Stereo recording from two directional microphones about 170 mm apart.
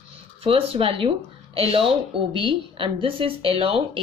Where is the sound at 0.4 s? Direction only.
35° right (ahead or behind).